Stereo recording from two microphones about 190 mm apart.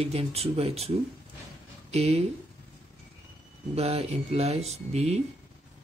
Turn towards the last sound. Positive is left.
turn(degrees=-35)  # may be behind; listen again after turning